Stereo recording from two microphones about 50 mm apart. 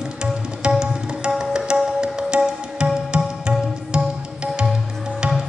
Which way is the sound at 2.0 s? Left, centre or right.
Centre.